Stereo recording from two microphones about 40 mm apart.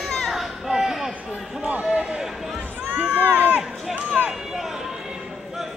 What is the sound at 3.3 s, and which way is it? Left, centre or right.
Run, right.